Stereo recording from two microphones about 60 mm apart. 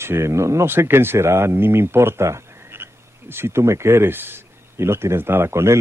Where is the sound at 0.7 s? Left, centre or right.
Right.